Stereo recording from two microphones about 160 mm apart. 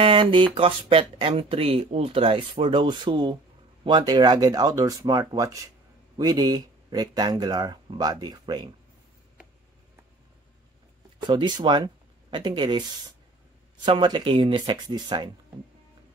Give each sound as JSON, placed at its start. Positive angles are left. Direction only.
{"t": 0.0, "sound": "a sound", "side_deg": -35}
{"t": 0.6, "sound": "speech", "side_deg": -35}
{"t": 11.2, "sound": "speech", "side_deg": -30}